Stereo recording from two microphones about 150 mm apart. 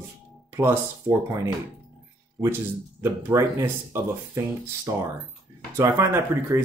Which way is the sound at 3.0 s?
20° right (ahead or behind).